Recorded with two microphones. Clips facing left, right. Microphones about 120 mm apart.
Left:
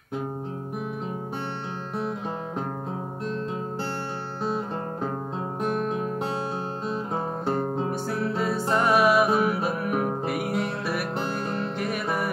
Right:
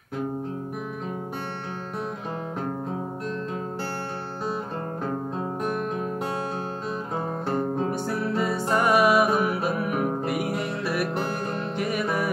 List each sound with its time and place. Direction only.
5.6 s guitar: 20° left (ahead or behind)
7.9 s music: 5° right (ahead or behind)